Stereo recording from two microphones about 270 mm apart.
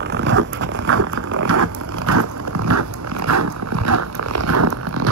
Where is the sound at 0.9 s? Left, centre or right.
Right.